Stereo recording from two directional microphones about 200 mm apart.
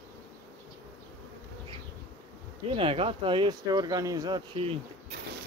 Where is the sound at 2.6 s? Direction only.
25° right (ahead or behind).